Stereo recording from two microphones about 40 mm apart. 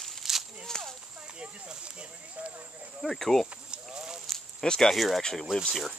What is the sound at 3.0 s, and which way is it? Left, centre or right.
Speech, centre.